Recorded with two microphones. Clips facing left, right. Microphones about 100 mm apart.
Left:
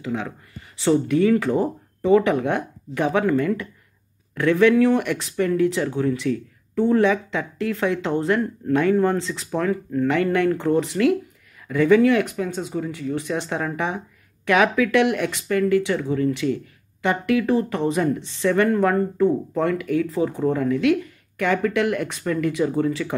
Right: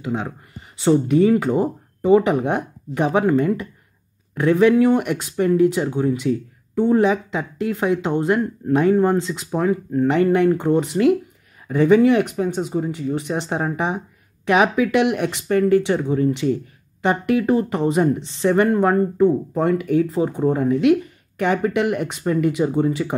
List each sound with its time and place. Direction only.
0.0 s speech: 25° right (ahead or behind)
15.4 s speech: 30° right (ahead or behind)